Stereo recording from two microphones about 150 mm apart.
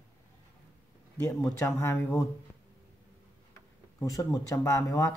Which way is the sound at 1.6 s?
15° left (ahead or behind).